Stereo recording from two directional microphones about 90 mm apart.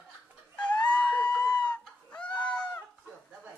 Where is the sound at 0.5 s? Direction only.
15° left (ahead or behind).